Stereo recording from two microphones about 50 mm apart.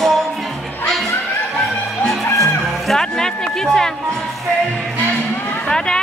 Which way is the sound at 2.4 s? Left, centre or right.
Centre.